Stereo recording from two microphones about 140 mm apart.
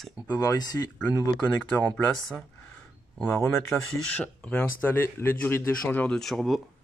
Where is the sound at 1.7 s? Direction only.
10° left (ahead or behind).